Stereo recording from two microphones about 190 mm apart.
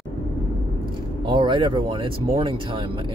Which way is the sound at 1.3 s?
25° right (ahead or behind).